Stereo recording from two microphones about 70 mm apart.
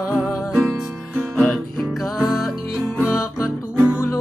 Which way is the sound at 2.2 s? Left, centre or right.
Centre.